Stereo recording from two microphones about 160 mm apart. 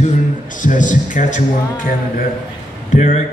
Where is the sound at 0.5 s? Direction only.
55° left (ahead or behind).